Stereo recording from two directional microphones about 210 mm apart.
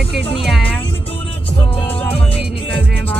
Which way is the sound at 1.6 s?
25° left (ahead or behind).